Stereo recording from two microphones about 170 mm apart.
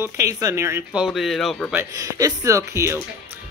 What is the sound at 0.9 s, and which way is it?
Speech, 5° right (ahead or behind).